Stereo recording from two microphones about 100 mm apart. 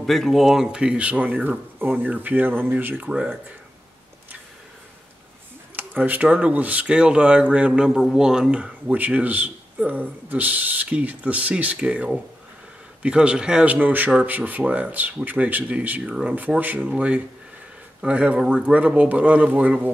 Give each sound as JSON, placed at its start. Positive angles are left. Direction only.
{"t": 0.0, "sound": "speech", "side_deg": 0}
{"t": 5.8, "sound": "speech", "side_deg": -15}